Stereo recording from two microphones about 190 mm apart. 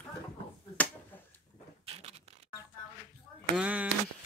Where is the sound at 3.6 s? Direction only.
5° right (ahead or behind).